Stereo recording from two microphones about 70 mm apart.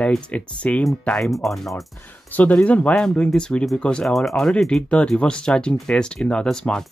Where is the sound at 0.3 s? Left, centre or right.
Left.